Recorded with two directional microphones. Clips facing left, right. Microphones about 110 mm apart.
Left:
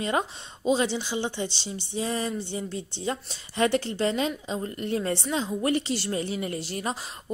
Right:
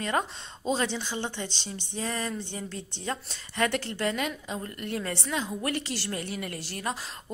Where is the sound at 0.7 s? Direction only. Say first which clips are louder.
Left 4 dB; 15° left (ahead or behind).